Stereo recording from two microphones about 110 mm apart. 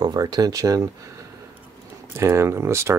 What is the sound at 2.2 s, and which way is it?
Speech, 25° right (ahead or behind).